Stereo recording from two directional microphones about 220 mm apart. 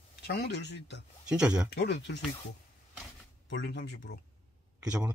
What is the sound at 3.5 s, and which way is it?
Speech, 50° left (ahead or behind).